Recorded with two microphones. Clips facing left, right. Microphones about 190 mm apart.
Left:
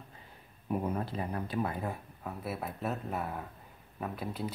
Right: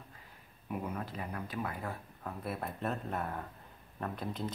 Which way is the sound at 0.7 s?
35° left (ahead or behind).